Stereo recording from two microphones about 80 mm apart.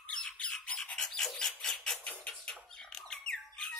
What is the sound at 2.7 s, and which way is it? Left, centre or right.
Squawk, centre.